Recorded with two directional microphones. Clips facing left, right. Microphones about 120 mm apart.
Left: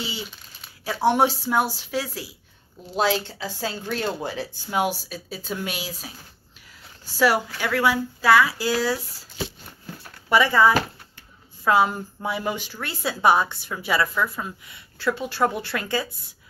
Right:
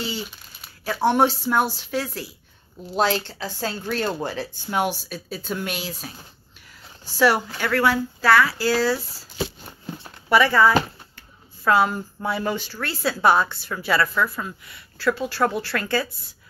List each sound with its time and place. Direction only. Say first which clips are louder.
1.0 s speech: right 1 dB; 10° left (ahead or behind)
7.2 s speech: right 1 dB; 5° left (ahead or behind)
9.9 s a sound: right 5 dB; 20° right (ahead or behind)
10.3 s speech: right 1 dB; 15° left (ahead or behind)